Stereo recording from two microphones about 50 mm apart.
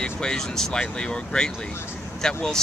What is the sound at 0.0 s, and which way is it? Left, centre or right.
Speech, centre.